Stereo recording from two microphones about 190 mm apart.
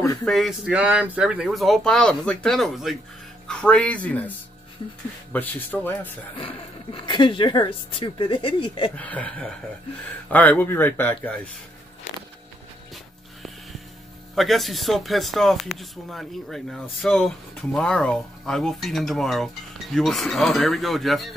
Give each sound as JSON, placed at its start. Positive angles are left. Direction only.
{"t": 0.0, "sound": "a sound", "side_deg": 15}
{"t": 0.3, "sound": "speech", "side_deg": 0}
{"t": 6.3, "sound": "a woman's voice", "side_deg": 25}
{"t": 8.9, "sound": "speech", "side_deg": 5}
{"t": 14.3, "sound": "speech", "side_deg": 0}